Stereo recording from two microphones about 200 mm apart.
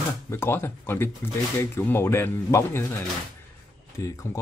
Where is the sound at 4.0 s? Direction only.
15° left (ahead or behind).